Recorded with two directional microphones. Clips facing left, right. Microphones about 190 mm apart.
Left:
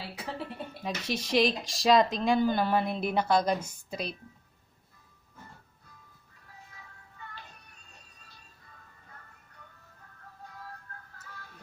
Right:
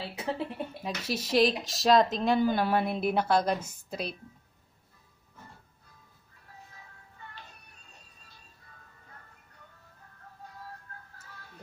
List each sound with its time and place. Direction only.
0.0 s speech: 20° right (ahead or behind)
0.8 s speech: 5° right (ahead or behind)